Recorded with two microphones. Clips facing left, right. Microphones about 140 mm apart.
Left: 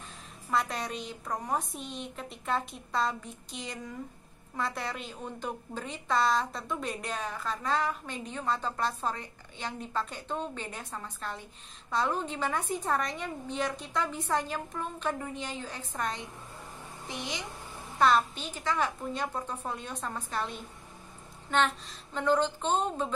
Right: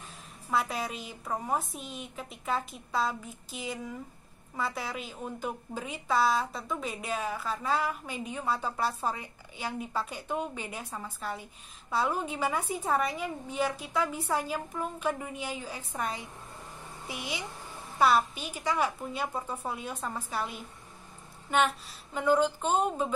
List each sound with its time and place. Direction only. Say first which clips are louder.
0.5 s a woman's voice: even; 5° right (ahead or behind)